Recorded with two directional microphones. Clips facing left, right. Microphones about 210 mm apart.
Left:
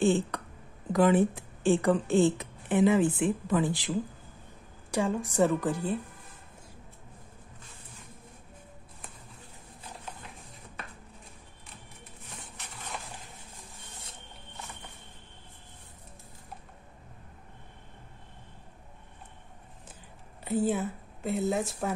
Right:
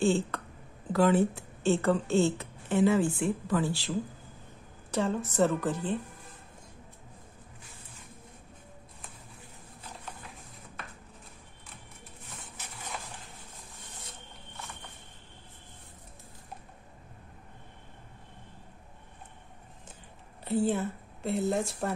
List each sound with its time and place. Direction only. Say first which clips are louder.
0.0 s a sound: left 1 dB; 15° left (ahead or behind)
0.9 s speech: left 1 dB; 15° left (ahead or behind)
4.9 s speech: left 1 dB; 10° left (ahead or behind)
20.4 s speech: even; 5° left (ahead or behind)